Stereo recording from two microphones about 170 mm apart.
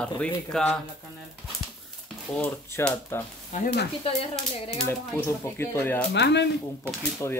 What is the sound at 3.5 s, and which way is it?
Speech, 45° left (ahead or behind).